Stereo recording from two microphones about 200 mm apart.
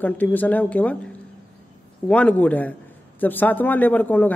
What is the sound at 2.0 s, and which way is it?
Speech, 5° left (ahead or behind).